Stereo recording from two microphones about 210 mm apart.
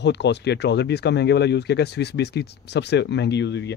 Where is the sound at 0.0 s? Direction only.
55° left (ahead or behind).